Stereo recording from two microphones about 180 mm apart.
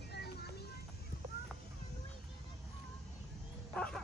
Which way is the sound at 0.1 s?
65° left (ahead or behind).